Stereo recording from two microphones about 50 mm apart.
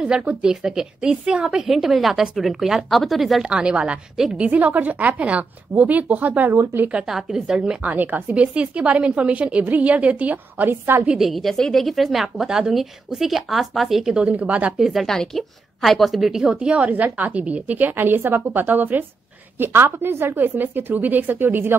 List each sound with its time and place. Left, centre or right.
0.0 s a woman's voice: right
0.4 s a woman's voice: centre
3.4 s a woman's voice: centre
4.5 s a woman's voice: right
7.1 s a woman's voice: centre
7.8 s a woman's voice: right
8.5 s a woman's voice: right
11.1 s speech: centre
12.4 s speech: centre
14.0 s a woman's voice: centre
14.8 s a woman's voice: centre; by 17.9 s right
17.9 s a woman's voice: right
19.6 s a woman's voice: right